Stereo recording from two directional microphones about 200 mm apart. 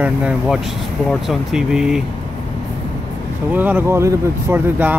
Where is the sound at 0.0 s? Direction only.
5° right (ahead or behind).